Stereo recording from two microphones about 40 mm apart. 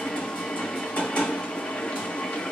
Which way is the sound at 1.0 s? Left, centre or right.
Left.